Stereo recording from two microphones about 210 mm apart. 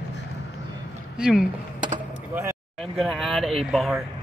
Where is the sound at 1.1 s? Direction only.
5° right (ahead or behind).